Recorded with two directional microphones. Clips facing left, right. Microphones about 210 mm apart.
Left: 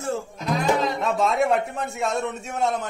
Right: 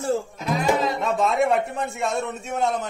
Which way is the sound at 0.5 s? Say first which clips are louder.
Even; 5° right (ahead or behind).